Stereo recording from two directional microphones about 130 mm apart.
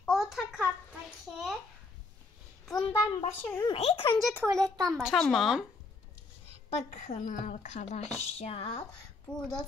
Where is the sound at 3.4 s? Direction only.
15° left (ahead or behind).